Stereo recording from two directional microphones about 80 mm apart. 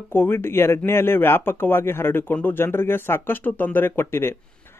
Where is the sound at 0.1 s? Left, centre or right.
Left.